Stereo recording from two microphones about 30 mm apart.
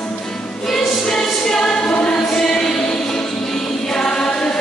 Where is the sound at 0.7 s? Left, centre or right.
Centre.